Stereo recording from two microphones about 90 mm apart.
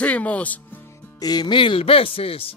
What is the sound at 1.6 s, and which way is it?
Speech, 85° left.